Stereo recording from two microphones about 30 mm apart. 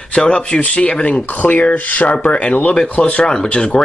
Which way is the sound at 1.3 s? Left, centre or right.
Left.